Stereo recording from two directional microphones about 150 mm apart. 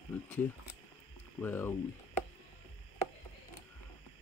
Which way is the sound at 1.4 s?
15° left (ahead or behind).